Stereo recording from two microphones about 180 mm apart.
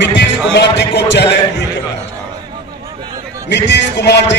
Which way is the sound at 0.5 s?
70° left (ahead or behind).